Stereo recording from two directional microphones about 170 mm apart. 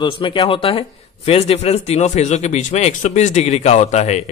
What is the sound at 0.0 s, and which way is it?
Speech, 30° left (ahead or behind).